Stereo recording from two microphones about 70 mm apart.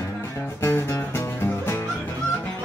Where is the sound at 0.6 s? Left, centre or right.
Left.